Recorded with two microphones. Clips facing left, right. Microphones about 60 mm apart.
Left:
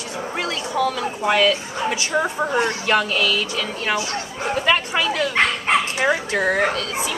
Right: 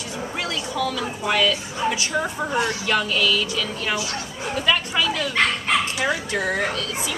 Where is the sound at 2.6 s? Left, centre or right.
Left.